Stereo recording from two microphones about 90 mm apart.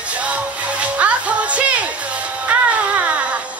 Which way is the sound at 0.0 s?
15° right (ahead or behind).